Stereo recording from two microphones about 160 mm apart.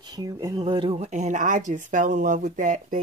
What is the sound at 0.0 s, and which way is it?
Speech, 25° right (ahead or behind).